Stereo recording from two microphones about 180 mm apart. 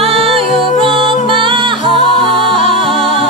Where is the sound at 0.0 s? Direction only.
30° right (ahead or behind).